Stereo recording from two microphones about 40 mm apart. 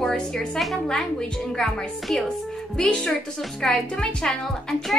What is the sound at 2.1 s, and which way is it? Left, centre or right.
Speech, centre.